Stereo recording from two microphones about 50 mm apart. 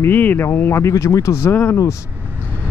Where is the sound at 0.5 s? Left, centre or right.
Left.